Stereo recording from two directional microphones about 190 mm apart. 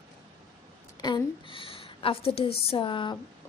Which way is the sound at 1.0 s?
25° left (ahead or behind).